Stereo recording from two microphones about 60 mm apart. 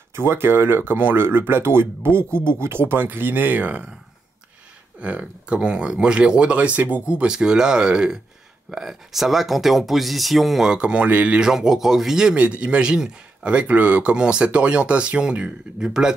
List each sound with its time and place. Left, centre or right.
0.1 s speech: right
5.0 s speech: centre
10.7 s speech: centre
11.3 s speech: centre